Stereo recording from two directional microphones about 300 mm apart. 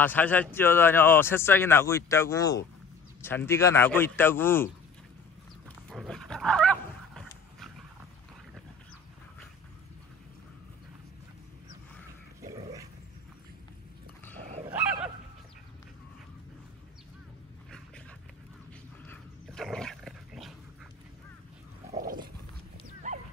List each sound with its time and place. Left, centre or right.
0.0 s speech: centre
5.9 s dog: centre
12.4 s dog: centre
14.7 s dog: centre
17.6 s dog: centre
19.0 s dog: centre
21.9 s dog: right